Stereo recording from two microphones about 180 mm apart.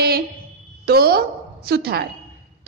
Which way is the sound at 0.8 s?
60° right (ahead or behind).